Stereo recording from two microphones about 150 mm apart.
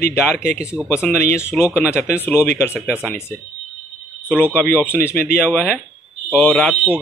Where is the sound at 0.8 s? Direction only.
10° right (ahead or behind).